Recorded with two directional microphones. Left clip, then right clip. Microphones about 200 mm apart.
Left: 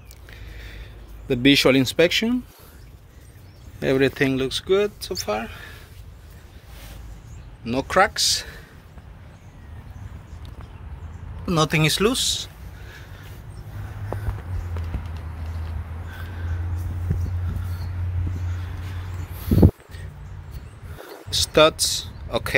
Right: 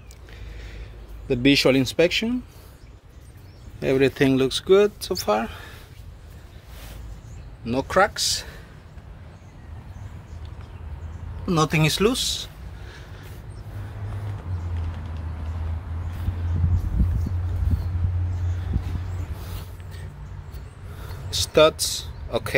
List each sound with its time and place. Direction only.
0.3 s a sound: centre (ahead or behind)
1.2 s speech: 10° left (ahead or behind)
3.8 s speech: 10° left (ahead or behind)
4.3 s speech: 30° right (ahead or behind)
7.6 s speech: 5° left (ahead or behind)
11.4 s speech: 5° left (ahead or behind)
21.3 s a sound: 5° left (ahead or behind)